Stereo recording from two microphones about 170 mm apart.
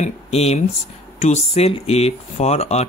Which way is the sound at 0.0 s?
40° left (ahead or behind).